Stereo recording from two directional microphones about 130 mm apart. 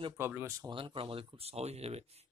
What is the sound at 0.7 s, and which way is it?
Speech, 45° right (ahead or behind).